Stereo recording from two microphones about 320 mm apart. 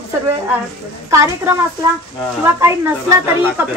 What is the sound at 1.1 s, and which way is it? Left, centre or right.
Speech, centre.